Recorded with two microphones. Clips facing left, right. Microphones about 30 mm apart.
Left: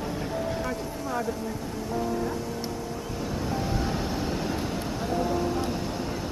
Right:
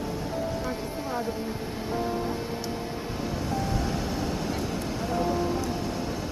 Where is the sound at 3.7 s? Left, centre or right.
Centre.